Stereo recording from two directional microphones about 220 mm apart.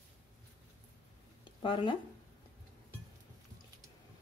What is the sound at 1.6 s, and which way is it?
Speech, 25° left (ahead or behind).